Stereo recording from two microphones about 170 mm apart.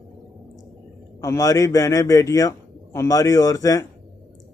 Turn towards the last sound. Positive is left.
turn(degrees=20)  # may be behind; listen again after turning